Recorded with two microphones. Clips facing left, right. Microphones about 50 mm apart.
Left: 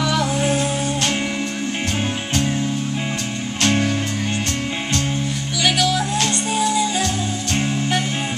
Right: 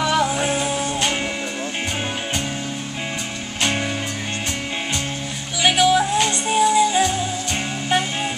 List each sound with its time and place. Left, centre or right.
0.0 s music: centre
3.6 s music: centre
5.6 s music: centre